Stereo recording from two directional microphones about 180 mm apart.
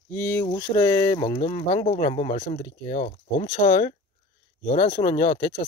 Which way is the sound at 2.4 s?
45° left (ahead or behind).